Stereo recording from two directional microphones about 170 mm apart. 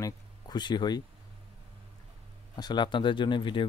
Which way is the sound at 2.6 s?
25° left (ahead or behind).